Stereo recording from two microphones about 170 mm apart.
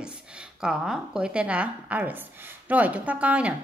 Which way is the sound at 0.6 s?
5° right (ahead or behind).